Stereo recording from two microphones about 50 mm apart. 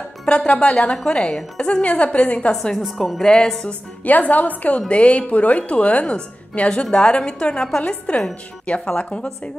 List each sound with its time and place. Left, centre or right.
0.2 s music: centre
0.5 s a woman's voice: left
1.8 s a woman's voice: left
2.8 s a woman's voice: centre
3.6 s a woman's voice: left
4.7 s a woman's voice: left